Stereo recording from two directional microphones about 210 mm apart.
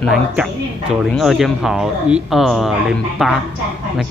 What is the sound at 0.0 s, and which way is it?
Speech, centre (ahead or behind).